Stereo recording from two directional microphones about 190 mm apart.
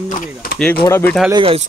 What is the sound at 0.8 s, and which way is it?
Speech, 15° left (ahead or behind).